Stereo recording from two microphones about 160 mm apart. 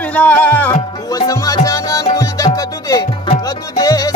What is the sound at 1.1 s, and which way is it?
Music, 20° left (ahead or behind).